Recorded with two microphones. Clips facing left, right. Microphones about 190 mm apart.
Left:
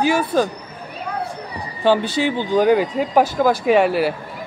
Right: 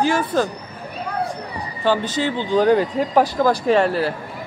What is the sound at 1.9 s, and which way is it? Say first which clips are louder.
Speech: left 3 dB; 15° left (ahead or behind).